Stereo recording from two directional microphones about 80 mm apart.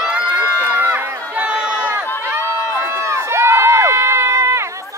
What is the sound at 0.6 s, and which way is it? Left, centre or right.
Run, right.